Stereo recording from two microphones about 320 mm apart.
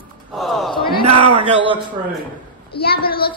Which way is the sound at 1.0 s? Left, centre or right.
Centre.